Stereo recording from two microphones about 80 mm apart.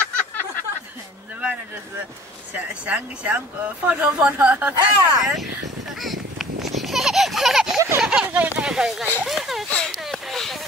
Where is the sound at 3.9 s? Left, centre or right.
Centre.